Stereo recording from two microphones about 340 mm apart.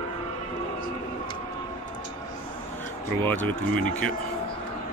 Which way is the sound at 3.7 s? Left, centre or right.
Right.